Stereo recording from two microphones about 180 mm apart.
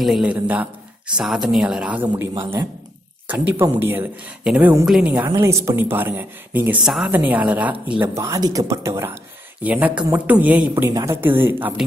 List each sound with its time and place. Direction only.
0.0 s speech: centre (ahead or behind)